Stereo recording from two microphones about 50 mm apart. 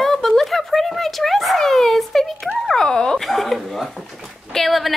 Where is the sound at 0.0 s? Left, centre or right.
Centre.